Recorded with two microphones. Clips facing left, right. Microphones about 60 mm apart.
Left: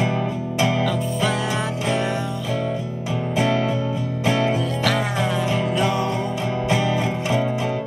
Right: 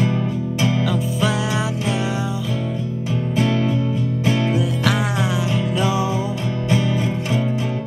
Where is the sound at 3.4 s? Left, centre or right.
Centre.